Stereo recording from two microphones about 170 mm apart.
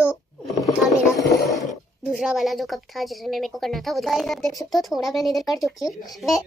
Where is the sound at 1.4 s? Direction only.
Centre (ahead or behind).